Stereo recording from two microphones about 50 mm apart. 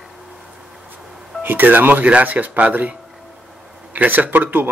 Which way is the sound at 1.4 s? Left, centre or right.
Right.